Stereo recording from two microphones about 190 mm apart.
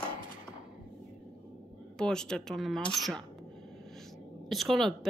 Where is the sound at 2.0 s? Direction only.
5° left (ahead or behind).